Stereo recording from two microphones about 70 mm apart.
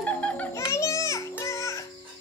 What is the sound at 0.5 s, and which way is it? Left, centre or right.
Music, left.